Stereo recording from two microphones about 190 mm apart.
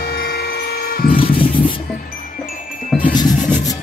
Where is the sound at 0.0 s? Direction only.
55° left (ahead or behind).